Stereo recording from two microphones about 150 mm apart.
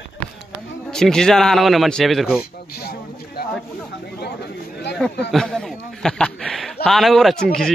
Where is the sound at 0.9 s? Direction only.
5° left (ahead or behind).